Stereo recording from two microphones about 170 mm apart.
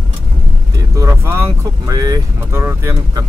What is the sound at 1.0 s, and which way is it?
Vehicle, 15° right (ahead or behind).